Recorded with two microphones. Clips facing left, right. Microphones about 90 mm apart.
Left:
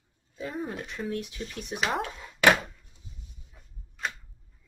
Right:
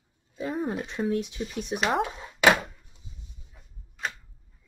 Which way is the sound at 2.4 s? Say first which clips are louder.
Right 1 dB; 15° right (ahead or behind).